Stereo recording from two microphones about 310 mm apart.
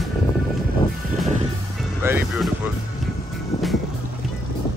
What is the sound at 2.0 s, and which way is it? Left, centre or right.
Speech, centre.